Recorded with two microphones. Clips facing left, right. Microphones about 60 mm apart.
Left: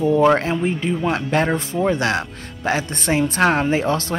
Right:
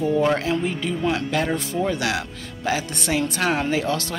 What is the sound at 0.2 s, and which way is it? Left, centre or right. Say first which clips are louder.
Speech: left 5 dB; left.